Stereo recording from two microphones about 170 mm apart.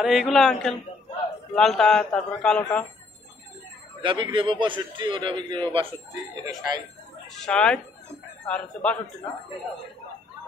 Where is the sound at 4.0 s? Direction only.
30° right (ahead or behind).